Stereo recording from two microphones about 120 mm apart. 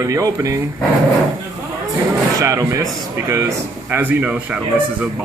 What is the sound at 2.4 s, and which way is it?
Speech, 25° right (ahead or behind).